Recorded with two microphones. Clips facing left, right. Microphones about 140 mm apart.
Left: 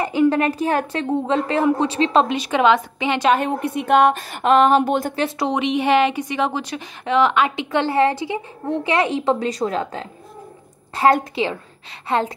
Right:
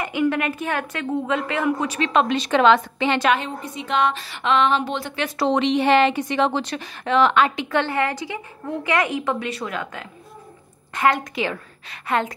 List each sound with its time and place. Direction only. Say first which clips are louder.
0.0 s a woman's voice: left 5 dB; 35° left (ahead or behind)
2.3 s a woman's voice: even; 10° left (ahead or behind)
3.3 s speech: left 8 dB; 60° left (ahead or behind)
5.4 s a woman's voice: right 3 dB; 10° left (ahead or behind); by 12.2 s 30° left (ahead or behind)